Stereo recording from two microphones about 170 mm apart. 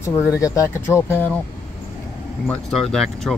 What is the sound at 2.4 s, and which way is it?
Speech, 5° left (ahead or behind).